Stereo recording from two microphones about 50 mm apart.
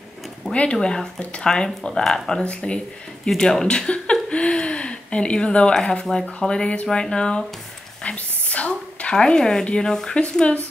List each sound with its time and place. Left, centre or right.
0.5 s speech: centre
2.4 s speech: left
8.0 s a sound: left
9.1 s speech: centre